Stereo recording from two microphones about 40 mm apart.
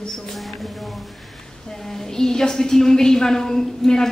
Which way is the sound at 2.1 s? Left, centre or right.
Centre.